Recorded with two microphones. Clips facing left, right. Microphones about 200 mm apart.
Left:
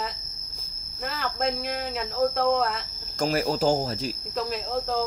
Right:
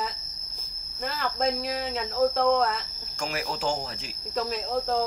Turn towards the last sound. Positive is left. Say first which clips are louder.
# right 1 dB
turn(degrees=0)  # may be behind; listen again after turning